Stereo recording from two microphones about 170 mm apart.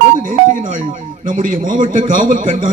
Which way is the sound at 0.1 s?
50° right (ahead or behind).